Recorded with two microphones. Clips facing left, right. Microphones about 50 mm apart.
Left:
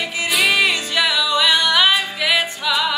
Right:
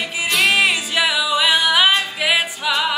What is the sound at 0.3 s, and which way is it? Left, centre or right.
Music, centre.